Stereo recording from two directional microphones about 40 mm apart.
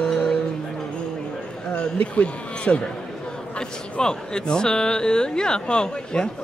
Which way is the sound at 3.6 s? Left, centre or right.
Left.